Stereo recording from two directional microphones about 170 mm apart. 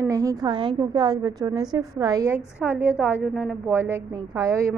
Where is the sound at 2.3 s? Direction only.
10° right (ahead or behind).